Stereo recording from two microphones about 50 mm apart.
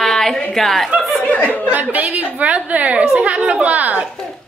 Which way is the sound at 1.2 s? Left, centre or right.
Left.